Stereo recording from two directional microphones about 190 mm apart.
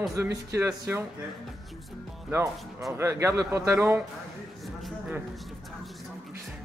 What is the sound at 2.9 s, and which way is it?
Speech, 15° right (ahead or behind).